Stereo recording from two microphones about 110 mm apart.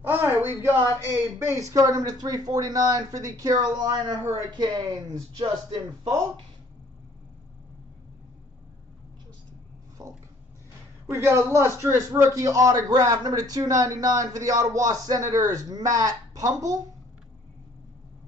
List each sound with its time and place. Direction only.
0.0 s a man's voice: 20° right (ahead or behind); by 6.2 s 35° right (ahead or behind)
10.0 s speech: 40° right (ahead or behind)
11.1 s a man's voice: 25° right (ahead or behind)